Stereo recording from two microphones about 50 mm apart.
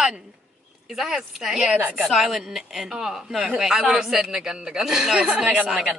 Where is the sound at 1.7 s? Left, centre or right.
Right.